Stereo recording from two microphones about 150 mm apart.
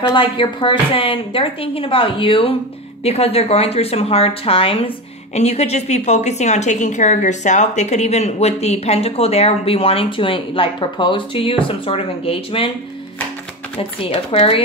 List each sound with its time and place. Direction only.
0.1 s a woman's voice: 35° left (ahead or behind)
13.7 s a woman's voice: 40° left (ahead or behind)